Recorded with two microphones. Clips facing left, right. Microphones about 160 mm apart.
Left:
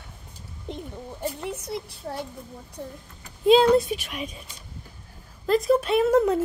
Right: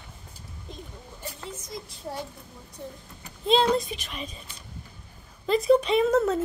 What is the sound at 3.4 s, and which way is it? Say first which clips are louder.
Speech: left 6 dB; 10° left (ahead or behind).